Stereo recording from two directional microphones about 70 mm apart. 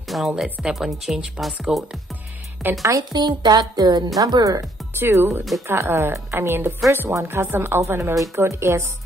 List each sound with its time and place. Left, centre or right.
0.1 s a woman's voice: centre
2.8 s speech: right
3.1 s speech: right
4.2 s speech: right
4.9 s speech: right
7.8 s speech: right